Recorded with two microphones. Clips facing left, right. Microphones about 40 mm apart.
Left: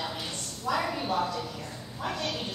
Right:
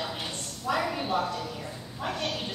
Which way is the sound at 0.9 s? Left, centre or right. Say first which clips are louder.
Even; right.